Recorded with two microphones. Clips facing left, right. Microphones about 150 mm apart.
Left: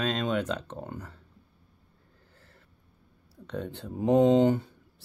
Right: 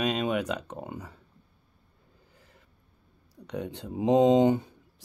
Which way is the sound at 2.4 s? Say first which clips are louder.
Even; 15° right (ahead or behind).